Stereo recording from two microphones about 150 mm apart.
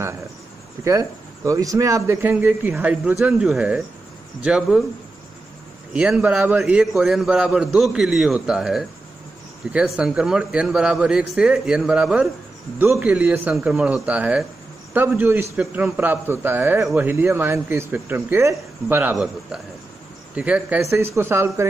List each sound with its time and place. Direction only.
0.8 s a man's voice: 20° right (ahead or behind); by 4.8 s 5° right (ahead or behind)
5.9 s a man's voice: 5° right (ahead or behind)
20.3 s a man's voice: 10° right (ahead or behind)